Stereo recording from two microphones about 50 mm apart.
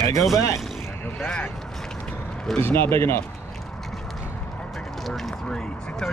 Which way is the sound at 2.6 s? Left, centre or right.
Left.